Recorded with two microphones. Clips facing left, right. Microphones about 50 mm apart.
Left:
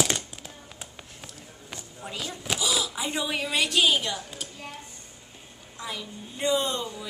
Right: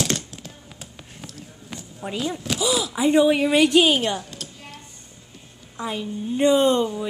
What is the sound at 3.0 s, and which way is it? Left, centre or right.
Speech, right.